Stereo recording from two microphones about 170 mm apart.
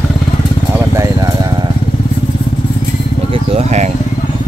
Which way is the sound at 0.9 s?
20° right (ahead or behind).